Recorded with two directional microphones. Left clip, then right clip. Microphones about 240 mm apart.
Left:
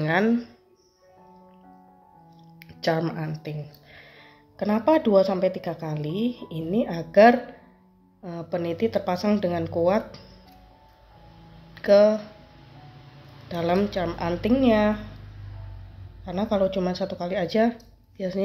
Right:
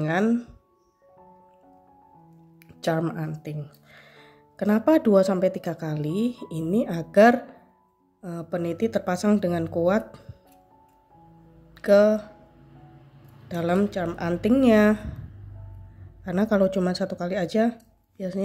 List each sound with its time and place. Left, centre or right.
0.0 s speech: centre
2.6 s speech: centre
11.7 s speech: centre
13.5 s speech: centre
16.3 s speech: right